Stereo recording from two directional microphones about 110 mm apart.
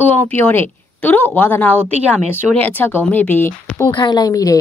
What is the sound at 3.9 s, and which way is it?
Speech, 40° left (ahead or behind).